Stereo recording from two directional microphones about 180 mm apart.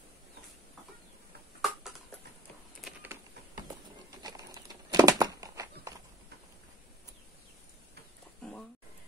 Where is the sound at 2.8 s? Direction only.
5° right (ahead or behind).